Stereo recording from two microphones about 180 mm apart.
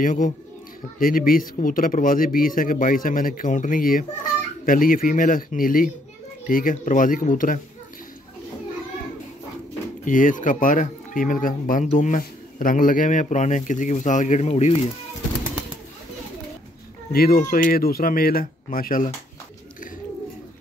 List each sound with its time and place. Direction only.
0.0 s speech: 45° left (ahead or behind)
10.0 s speech: 45° left (ahead or behind)
17.1 s speech: 55° left (ahead or behind)